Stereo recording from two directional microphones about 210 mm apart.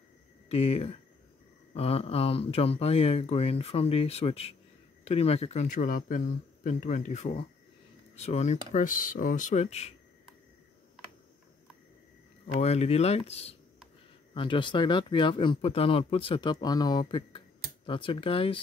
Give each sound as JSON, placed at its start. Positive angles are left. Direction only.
{"t": 0.5, "sound": "speech", "side_deg": 30}
{"t": 12.5, "sound": "speech", "side_deg": 30}